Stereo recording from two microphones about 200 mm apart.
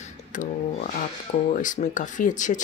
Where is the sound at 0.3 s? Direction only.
40° left (ahead or behind).